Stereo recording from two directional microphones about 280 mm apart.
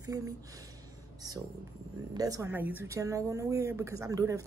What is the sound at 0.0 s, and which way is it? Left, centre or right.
Speech, centre.